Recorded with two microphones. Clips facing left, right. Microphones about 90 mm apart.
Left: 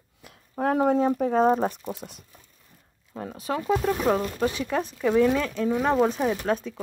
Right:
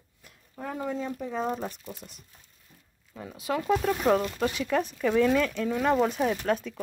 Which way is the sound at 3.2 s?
40° left (ahead or behind).